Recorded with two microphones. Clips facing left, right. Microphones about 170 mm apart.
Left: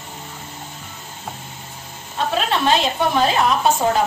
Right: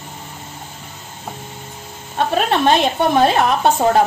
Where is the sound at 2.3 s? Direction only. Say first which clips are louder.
Right 3 dB; 55° right (ahead or behind).